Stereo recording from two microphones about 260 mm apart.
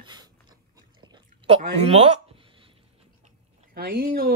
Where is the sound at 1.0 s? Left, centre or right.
Centre.